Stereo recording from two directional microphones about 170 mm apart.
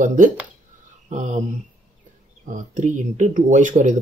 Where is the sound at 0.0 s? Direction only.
50° right (ahead or behind).